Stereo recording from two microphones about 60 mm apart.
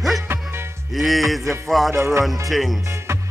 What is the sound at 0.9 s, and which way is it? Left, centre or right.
Music, centre.